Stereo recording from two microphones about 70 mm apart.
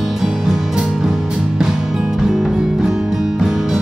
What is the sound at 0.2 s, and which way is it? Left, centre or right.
Music, centre.